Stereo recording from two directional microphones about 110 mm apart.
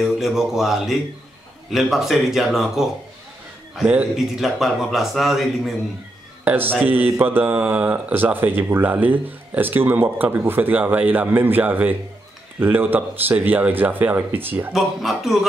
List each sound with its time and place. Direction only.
0.0 s speech: centre (ahead or behind)
6.4 s speech: 15° right (ahead or behind)
14.7 s speech: centre (ahead or behind)